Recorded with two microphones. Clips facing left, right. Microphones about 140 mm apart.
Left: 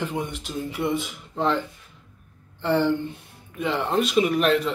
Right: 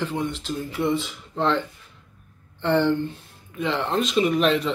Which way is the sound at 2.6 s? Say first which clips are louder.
Right 1 dB; 10° left (ahead or behind).